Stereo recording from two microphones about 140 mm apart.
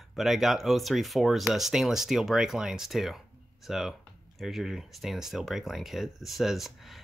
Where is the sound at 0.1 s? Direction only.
Centre (ahead or behind).